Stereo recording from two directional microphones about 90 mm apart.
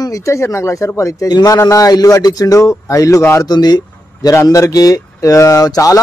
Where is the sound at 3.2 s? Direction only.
25° left (ahead or behind).